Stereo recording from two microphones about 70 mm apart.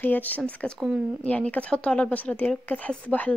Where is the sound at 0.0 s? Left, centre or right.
Left.